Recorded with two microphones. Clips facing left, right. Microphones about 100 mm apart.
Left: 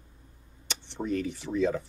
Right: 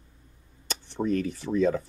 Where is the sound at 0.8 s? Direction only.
45° right (ahead or behind).